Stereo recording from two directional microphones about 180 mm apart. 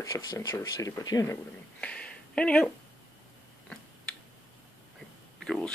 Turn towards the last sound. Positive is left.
turn(degrees=5)  # may be behind; listen again after turning